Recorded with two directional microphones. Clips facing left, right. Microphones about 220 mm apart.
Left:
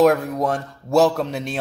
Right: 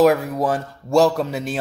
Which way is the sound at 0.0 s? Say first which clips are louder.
Even; centre (ahead or behind).